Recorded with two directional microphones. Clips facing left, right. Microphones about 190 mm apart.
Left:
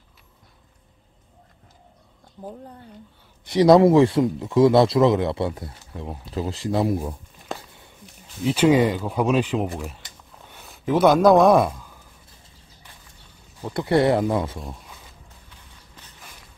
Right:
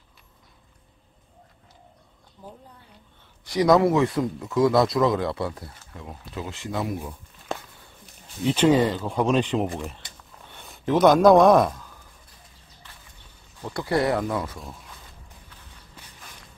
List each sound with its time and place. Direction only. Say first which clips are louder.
3.4 s speech: left 5 dB; 30° left (ahead or behind)
8.5 s speech: left 2 dB; 10° left (ahead or behind)
13.6 s speech: left 4 dB; 15° left (ahead or behind)
13.8 s speech: left 5 dB; 25° left (ahead or behind)
16.0 s creak: right 1 dB; 10° right (ahead or behind)